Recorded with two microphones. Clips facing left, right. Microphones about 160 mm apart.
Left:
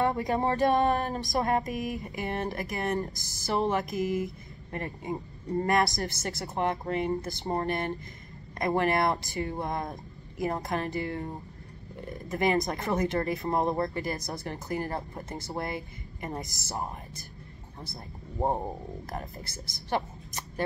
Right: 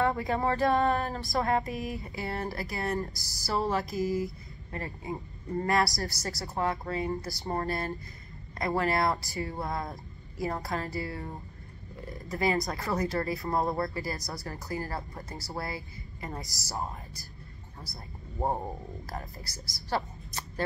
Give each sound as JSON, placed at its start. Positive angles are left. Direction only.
{"t": 0.3, "sound": "speech", "side_deg": 20}
{"t": 12.3, "sound": "speech", "side_deg": 20}
{"t": 18.4, "sound": "a woman's voice", "side_deg": 15}